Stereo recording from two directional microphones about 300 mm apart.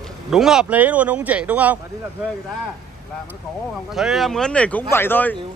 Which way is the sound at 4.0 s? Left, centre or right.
Centre.